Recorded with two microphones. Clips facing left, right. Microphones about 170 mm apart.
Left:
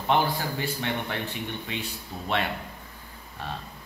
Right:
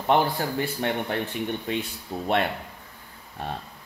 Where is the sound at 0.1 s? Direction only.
50° right (ahead or behind).